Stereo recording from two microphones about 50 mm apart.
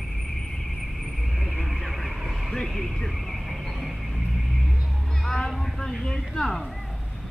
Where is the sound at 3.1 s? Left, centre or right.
Centre.